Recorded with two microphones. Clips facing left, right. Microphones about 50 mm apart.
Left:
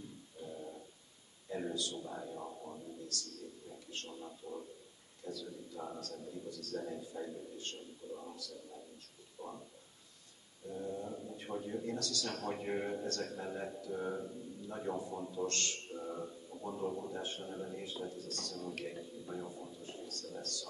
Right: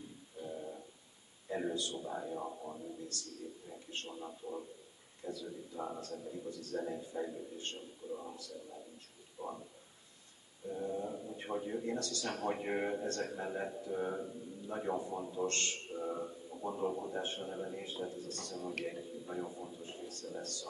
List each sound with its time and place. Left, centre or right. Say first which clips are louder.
0.4 s a sound: right 3 dB; centre
1.5 s a man's voice: right 2 dB; right
3.9 s a man's voice: right 3 dB; right
9.4 s a sound: right 4 dB; centre
10.7 s a man's voice: right 3 dB; centre
12.3 s a man's voice: right 4 dB; centre